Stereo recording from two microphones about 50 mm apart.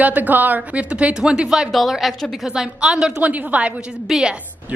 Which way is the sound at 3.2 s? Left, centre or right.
Right.